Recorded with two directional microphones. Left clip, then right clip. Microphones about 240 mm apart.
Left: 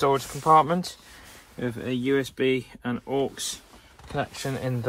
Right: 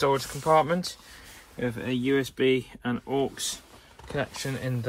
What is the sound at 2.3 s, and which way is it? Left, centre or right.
Speech, right.